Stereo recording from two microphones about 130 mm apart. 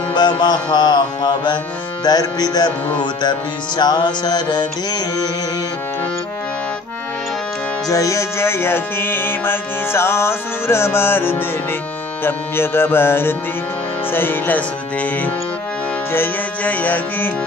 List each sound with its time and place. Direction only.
0.1 s music: 35° left (ahead or behind)
7.9 s music: 25° left (ahead or behind)
16.1 s music: 15° left (ahead or behind)